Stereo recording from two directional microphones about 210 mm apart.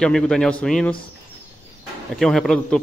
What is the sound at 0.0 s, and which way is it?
Speech, 5° left (ahead or behind).